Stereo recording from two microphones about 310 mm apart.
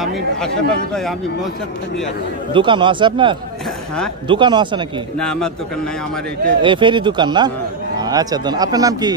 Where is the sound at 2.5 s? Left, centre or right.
Centre.